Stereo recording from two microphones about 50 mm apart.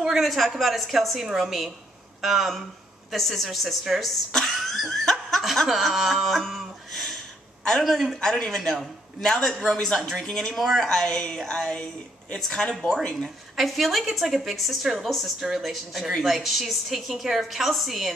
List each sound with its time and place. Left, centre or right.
0.1 s a woman's voice: centre
4.3 s cough: centre
5.7 s a woman's voice: centre
6.2 s a sound: centre
7.8 s a woman's voice: centre
8.2 s a man's voice: centre
13.6 s a woman's voice: centre